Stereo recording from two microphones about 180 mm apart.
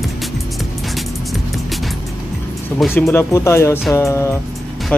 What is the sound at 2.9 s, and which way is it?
Speech, 15° left (ahead or behind).